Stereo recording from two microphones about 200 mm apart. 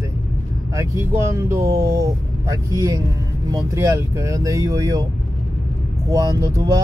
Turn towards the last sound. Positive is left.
turn(degrees=-20)  # may be behind; listen again after turning